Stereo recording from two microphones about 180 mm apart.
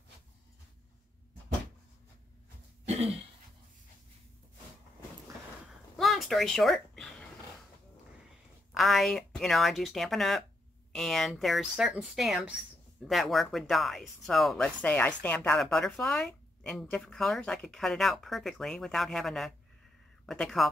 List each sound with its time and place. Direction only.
2.9 s throat clearing: 35° right (ahead or behind)
5.9 s a sound: centre (ahead or behind)
8.7 s speech: centre (ahead or behind)